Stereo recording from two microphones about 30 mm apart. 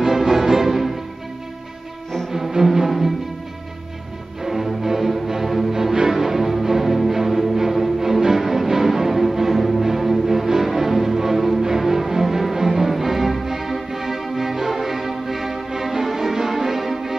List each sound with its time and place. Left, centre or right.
0.0 s music: centre
2.6 s music: centre
4.5 s music: centre